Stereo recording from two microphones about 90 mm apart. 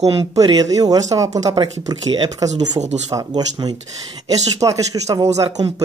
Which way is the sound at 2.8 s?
55° right (ahead or behind).